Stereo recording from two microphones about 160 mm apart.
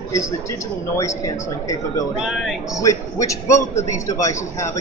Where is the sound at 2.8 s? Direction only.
20° left (ahead or behind).